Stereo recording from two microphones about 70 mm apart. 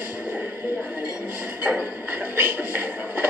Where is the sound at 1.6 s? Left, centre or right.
Right.